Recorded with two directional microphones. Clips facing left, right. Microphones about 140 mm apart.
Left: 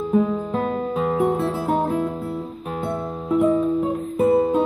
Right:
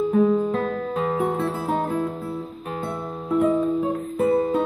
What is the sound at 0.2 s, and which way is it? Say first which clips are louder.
Music: right 4 dB; 5° left (ahead or behind).